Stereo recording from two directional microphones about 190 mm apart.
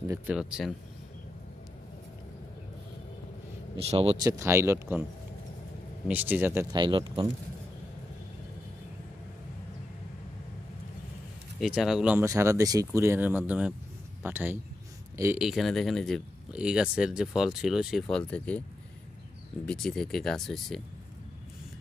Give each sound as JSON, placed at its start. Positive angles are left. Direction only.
{"t": 0.3, "sound": "speech", "side_deg": -5}
{"t": 3.8, "sound": "speech", "side_deg": -30}
{"t": 4.2, "sound": "speech", "side_deg": -15}
{"t": 6.0, "sound": "speech", "side_deg": -10}
{"t": 6.8, "sound": "speech", "side_deg": -25}
{"t": 11.6, "sound": "speech", "side_deg": 0}
{"t": 15.4, "sound": "speech", "side_deg": 0}
{"t": 19.6, "sound": "speech", "side_deg": 5}